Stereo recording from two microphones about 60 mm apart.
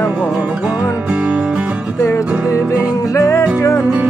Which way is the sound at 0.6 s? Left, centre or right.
Right.